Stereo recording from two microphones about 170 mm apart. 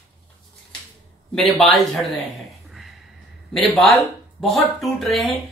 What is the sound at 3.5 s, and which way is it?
A man's voice, centre (ahead or behind).